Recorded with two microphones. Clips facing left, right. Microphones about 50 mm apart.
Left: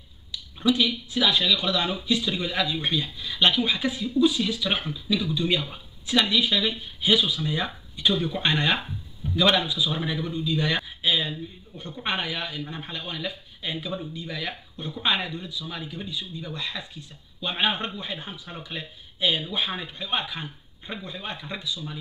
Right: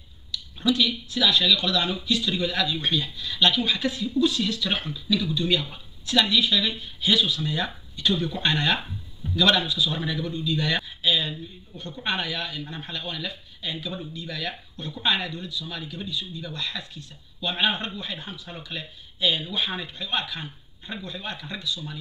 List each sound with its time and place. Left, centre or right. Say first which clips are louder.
0.3 s a man's voice: left 1 dB; centre